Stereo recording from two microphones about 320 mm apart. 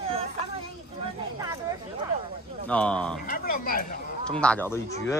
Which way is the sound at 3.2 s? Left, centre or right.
Left.